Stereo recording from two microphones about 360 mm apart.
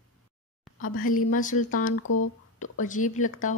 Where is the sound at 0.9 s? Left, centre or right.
Left.